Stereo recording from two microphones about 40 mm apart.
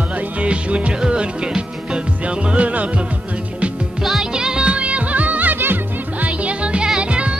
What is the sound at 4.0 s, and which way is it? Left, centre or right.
Music, centre.